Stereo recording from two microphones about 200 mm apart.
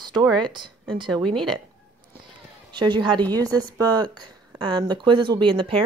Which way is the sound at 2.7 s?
20° right (ahead or behind).